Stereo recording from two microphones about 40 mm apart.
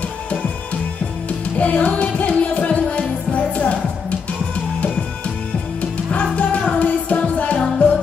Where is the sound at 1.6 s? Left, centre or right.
Left.